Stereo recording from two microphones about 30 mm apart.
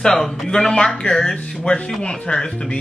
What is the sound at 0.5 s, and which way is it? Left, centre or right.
Speech, left.